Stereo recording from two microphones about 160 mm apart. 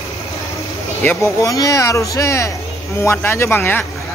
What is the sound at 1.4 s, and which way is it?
Speech, 20° left (ahead or behind).